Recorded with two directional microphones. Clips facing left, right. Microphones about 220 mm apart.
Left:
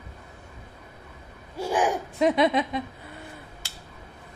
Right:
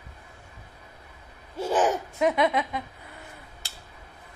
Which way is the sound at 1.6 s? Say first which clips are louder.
Right 1 dB; 10° left (ahead or behind).